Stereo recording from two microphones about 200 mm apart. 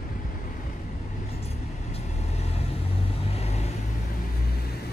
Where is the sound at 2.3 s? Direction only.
30° left (ahead or behind).